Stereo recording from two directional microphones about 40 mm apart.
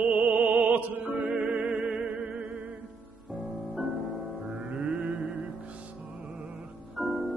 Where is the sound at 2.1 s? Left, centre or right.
Right.